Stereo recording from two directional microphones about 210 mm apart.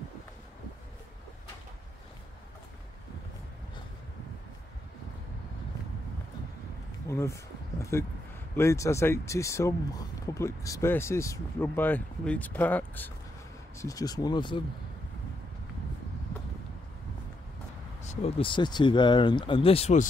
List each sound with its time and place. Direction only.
7.1 s speech: 15° left (ahead or behind)
18.0 s speech: 30° left (ahead or behind)